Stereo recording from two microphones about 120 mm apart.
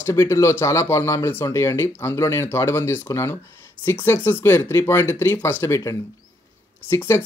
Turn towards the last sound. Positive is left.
turn(degrees=20)  # may be behind; listen again after turning